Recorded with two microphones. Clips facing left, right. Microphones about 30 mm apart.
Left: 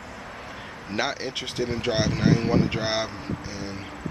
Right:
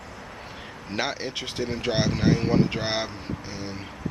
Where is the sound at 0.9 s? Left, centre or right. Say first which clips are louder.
Left 1 dB; centre.